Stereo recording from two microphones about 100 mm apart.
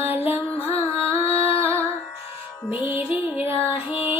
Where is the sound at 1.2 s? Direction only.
80° left.